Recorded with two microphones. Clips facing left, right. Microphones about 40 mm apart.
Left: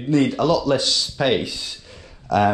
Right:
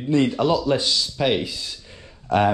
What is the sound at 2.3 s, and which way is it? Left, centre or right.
Speech, right.